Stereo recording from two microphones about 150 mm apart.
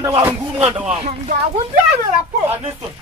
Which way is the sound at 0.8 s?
45° right (ahead or behind).